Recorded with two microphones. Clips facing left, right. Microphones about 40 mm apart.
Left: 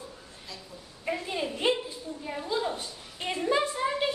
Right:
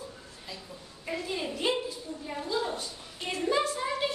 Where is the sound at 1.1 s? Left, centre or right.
Centre.